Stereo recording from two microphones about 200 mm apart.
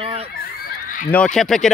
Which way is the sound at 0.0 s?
30° right (ahead or behind).